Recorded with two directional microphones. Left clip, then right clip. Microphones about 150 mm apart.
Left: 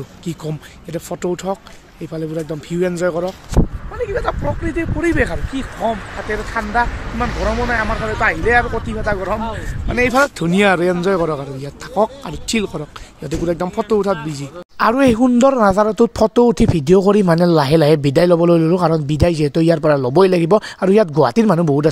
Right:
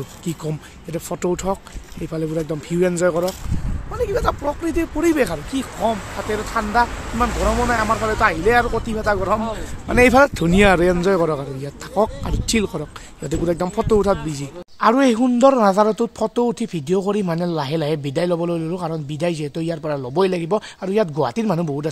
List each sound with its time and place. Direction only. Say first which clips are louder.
0.2 s a man's voice: left 1 dB; 5° left (ahead or behind)
4.0 s speech: even; 25° right (ahead or behind)
10.4 s a man's voice: even; centre (ahead or behind)
14.8 s speech: left 2 dB; 55° left (ahead or behind); by 21.8 s 35° left (ahead or behind)